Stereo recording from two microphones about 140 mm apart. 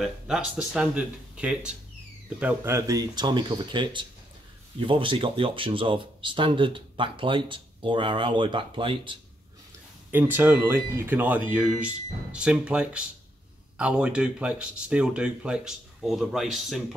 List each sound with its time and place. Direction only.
0.0 s speech: 5° right (ahead or behind)
2.7 s speech: 25° right (ahead or behind)
10.1 s speech: 15° right (ahead or behind)